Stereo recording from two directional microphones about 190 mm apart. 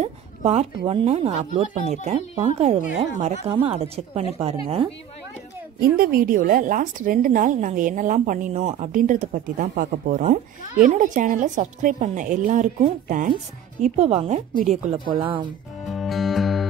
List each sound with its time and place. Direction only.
0.0 s speech: 30° right (ahead or behind)
5.8 s speech: 50° right (ahead or behind); by 15.4 s 25° right (ahead or behind)
15.8 s music: centre (ahead or behind)